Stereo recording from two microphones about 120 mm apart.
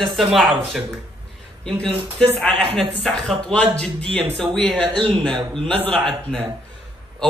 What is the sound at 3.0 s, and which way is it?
Speech, 5° left (ahead or behind).